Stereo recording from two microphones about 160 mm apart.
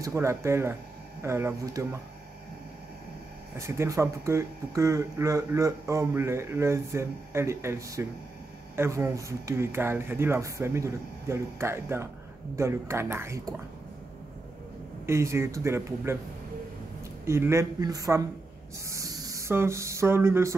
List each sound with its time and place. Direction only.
0.0 s speech: 20° right (ahead or behind)
3.5 s speech: 15° right (ahead or behind)
15.0 s speech: 15° right (ahead or behind)
17.2 s speech: 15° right (ahead or behind)